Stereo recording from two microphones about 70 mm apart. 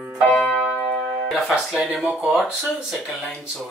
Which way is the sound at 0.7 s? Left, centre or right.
Centre.